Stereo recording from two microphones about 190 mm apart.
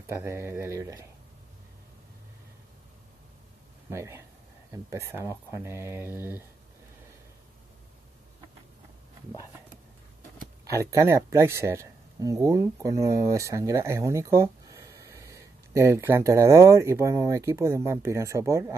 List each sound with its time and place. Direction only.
0.0 s speech: 15° right (ahead or behind)
3.9 s speech: 15° right (ahead or behind)
10.6 s speech: 15° right (ahead or behind)